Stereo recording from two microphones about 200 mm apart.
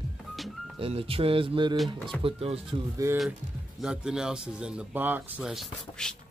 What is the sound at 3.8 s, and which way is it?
Speech, 5° right (ahead or behind).